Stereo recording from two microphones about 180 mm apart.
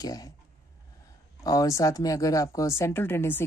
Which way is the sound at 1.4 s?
20° left (ahead or behind).